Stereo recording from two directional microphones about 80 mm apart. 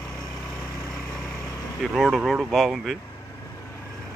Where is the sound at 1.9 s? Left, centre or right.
Centre.